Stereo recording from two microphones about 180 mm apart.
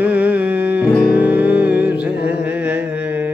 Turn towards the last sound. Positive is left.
turn(degrees=-10)  # may be behind; listen again after turning